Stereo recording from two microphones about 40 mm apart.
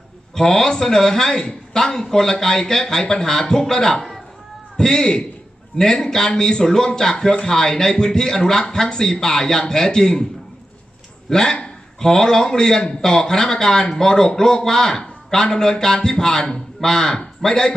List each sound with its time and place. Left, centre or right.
0.3 s a man's voice: centre
11.2 s a man's voice: centre